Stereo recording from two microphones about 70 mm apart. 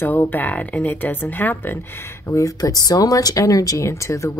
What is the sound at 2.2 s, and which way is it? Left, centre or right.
Speech, left.